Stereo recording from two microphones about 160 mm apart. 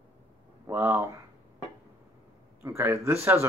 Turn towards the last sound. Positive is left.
turn(degrees=-15)  # may be behind; listen again after turning